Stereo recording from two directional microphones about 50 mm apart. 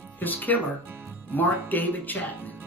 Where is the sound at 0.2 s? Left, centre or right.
Left.